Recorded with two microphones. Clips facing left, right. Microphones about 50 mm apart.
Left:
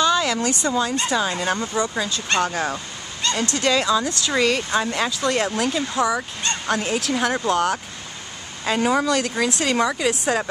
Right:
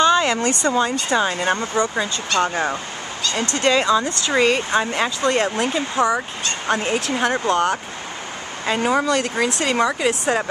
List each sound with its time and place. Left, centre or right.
0.0 s a sound: right
0.5 s speech: right
1.1 s speech: right